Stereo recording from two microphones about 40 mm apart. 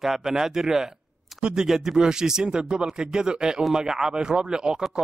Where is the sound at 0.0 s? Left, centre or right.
Centre.